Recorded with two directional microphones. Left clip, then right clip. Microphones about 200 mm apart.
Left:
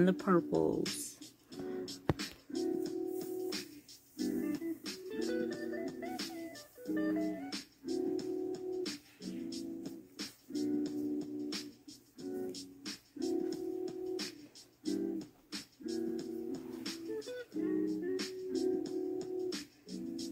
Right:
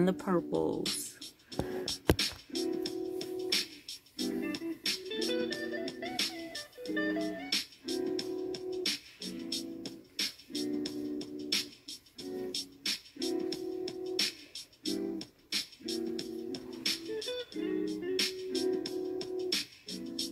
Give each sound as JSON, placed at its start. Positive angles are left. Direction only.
{"t": 0.0, "sound": "speech", "side_deg": -15}
{"t": 1.2, "sound": "music", "side_deg": -50}